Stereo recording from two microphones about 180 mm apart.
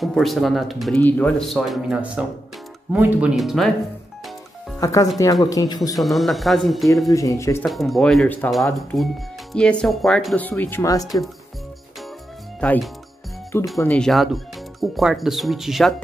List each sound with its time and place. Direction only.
0.0 s speech: centre (ahead or behind)
4.7 s speech: 20° left (ahead or behind)
5.9 s speech: centre (ahead or behind)
7.1 s speech: 20° left (ahead or behind)
7.6 s speech: centre (ahead or behind); by 11.1 s 15° left (ahead or behind)
12.5 s speech: 10° left (ahead or behind)